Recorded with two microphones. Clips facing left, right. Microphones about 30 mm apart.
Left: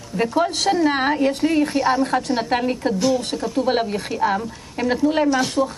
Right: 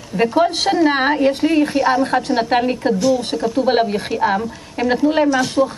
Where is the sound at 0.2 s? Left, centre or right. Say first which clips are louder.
Right 4 dB; centre.